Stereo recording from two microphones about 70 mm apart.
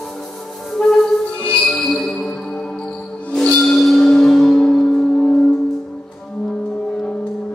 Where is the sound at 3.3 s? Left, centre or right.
Centre.